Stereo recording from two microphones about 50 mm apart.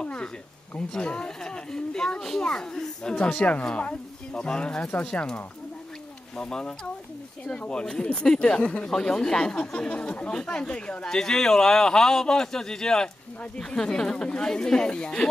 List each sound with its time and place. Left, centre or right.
0.0 s a sound: centre
0.7 s speech: centre
6.3 s speech: centre
11.1 s speech: centre